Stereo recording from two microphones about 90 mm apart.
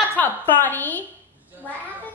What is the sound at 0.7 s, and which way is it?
Speech, 20° left (ahead or behind).